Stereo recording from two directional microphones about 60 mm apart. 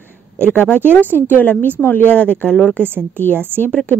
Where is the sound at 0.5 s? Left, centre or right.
Left.